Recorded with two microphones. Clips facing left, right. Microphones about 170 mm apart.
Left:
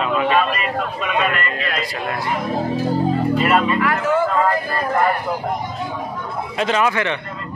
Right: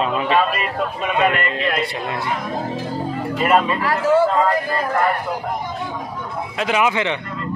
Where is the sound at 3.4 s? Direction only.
35° right (ahead or behind).